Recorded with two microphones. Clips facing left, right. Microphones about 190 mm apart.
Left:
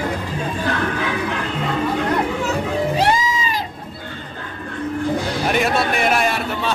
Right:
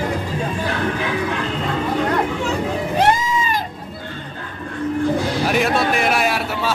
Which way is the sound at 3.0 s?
55° right (ahead or behind).